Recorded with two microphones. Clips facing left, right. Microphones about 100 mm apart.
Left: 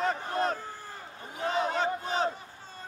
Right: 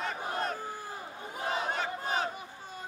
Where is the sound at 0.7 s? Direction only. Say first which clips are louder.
Right 3 dB; 10° right (ahead or behind).